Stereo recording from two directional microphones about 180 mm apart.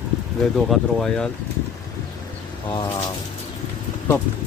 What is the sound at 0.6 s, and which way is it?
Speech, centre (ahead or behind).